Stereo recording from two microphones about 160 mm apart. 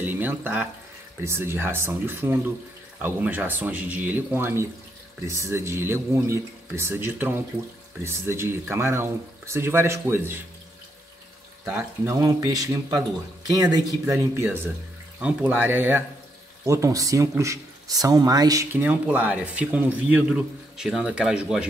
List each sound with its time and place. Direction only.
0.0 s speech: 10° right (ahead or behind)
11.6 s speech: 15° right (ahead or behind)